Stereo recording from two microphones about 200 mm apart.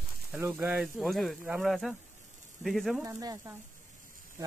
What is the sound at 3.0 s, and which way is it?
Speech, 20° right (ahead or behind).